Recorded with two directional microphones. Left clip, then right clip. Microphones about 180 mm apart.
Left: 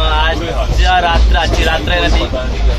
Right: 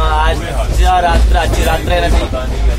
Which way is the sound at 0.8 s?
5° right (ahead or behind).